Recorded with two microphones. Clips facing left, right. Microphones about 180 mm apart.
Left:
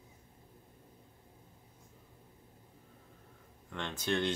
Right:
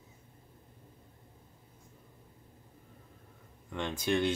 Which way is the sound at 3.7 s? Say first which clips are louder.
Right 4 dB; 10° right (ahead or behind).